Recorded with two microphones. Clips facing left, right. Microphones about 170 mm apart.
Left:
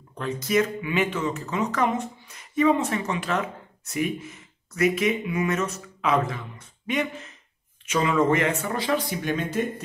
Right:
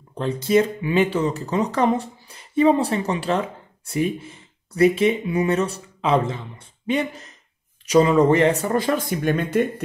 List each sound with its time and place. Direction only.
0.2 s speech: 30° right (ahead or behind); by 9.7 s 55° right (ahead or behind)